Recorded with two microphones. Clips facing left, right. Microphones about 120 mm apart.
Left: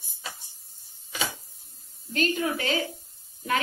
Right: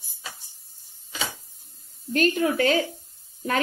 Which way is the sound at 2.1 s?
50° right (ahead or behind).